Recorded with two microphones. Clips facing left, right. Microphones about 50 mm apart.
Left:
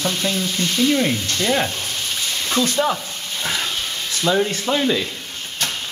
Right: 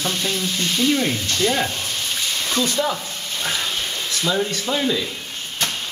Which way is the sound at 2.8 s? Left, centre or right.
Left.